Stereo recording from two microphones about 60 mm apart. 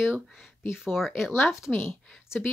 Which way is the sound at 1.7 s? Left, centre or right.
Left.